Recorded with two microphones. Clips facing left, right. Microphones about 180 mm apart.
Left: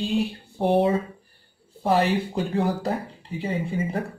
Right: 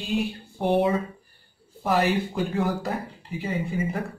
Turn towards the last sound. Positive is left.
turn(degrees=30)  # may be behind; listen again after turning